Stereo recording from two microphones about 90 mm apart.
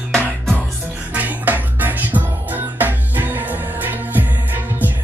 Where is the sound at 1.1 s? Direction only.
20° right (ahead or behind).